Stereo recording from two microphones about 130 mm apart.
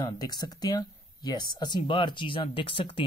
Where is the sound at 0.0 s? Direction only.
30° left (ahead or behind).